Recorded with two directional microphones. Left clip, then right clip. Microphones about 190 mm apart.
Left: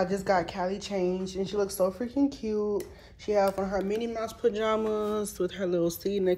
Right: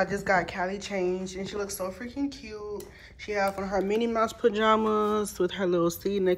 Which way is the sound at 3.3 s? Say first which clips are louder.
Left 2 dB; 15° left (ahead or behind).